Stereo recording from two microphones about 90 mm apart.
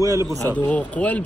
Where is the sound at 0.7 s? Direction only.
15° left (ahead or behind).